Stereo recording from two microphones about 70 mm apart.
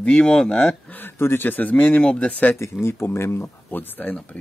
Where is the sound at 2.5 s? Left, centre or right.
Left.